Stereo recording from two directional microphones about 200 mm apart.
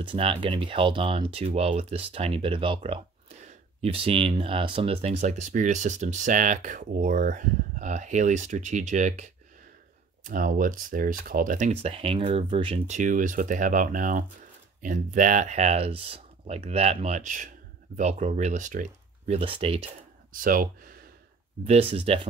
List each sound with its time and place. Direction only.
0.0 s speech: 25° right (ahead or behind)
10.2 s speech: 45° right (ahead or behind); by 19.9 s 30° right (ahead or behind)
20.3 s speech: 45° right (ahead or behind)
21.6 s speech: 30° right (ahead or behind)